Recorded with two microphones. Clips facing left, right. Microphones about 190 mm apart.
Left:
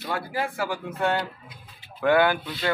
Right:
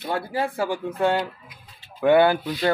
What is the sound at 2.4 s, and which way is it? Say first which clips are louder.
Speech: right 6 dB; 40° right (ahead or behind).